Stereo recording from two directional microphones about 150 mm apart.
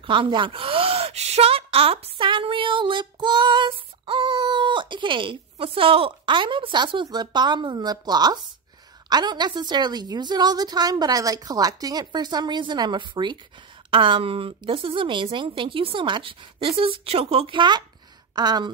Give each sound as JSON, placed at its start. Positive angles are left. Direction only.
{"t": 0.0, "sound": "a woman's voice", "side_deg": -35}